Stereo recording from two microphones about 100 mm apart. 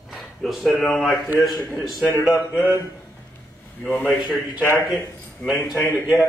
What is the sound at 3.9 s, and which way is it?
Speech, 15° left (ahead or behind).